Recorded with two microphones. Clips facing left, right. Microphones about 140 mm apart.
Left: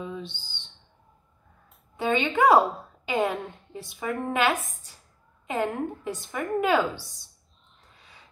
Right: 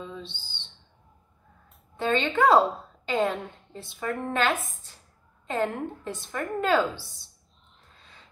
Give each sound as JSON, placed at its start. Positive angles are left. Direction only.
{"t": 0.0, "sound": "bird", "side_deg": 15}
{"t": 2.0, "sound": "speech", "side_deg": 15}